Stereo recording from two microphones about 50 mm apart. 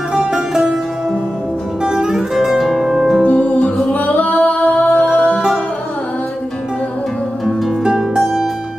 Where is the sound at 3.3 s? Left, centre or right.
Left.